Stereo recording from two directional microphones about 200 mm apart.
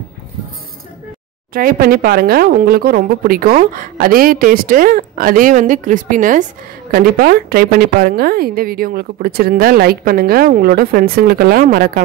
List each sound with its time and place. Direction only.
1.5 s a woman's voice: 45° right (ahead or behind)